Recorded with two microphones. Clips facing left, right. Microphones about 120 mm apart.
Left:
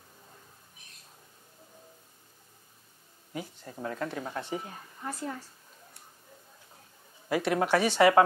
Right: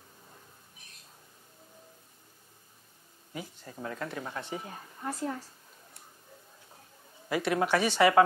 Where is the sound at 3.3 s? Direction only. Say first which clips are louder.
Left 2 dB; 20° left (ahead or behind).